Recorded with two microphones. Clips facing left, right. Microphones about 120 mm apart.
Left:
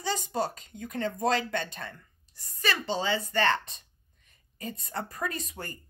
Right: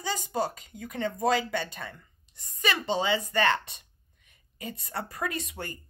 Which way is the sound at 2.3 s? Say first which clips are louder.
Right 1 dB; 15° right (ahead or behind).